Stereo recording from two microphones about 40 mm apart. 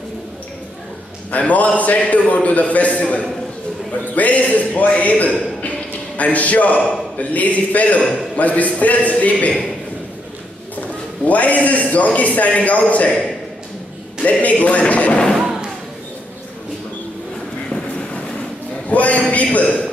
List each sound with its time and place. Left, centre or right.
1.3 s a man's voice: left
10.8 s a man's voice: left
14.4 s a man's voice: left
18.9 s a man's voice: left